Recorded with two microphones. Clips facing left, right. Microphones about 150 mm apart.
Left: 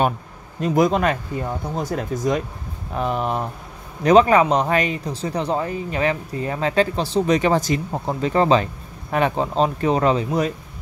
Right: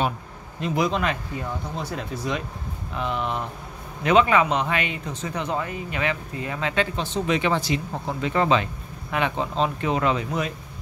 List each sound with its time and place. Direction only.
0.6 s speech: 45° left (ahead or behind)